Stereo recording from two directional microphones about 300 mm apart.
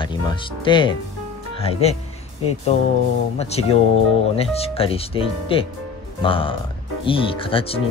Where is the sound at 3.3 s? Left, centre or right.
Left.